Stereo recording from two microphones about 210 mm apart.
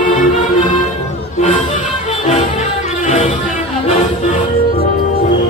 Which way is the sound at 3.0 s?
35° left (ahead or behind).